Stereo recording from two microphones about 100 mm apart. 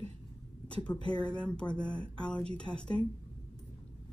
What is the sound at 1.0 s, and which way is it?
Speech, 10° left (ahead or behind).